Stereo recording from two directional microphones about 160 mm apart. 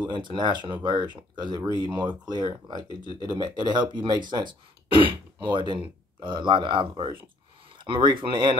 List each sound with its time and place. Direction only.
0.1 s speech: 30° right (ahead or behind)